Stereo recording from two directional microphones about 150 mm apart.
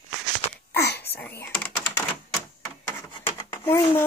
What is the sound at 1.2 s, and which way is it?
Typing, 15° left (ahead or behind).